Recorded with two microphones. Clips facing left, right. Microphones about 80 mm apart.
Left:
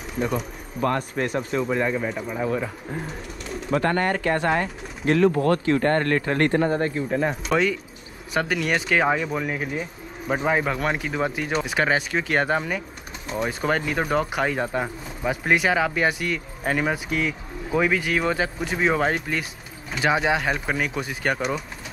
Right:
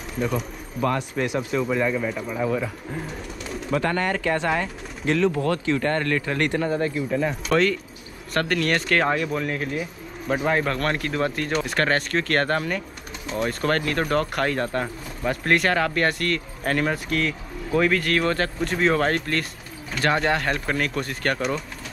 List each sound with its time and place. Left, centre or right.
0.1 s speech: centre
0.8 s speech: left
3.7 s speech: left
7.4 s speech: centre